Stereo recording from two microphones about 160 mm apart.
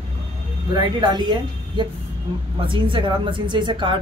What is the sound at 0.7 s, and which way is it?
Speech, 25° right (ahead or behind).